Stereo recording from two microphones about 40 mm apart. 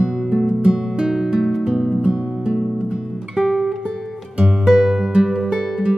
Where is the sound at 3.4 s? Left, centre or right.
Centre.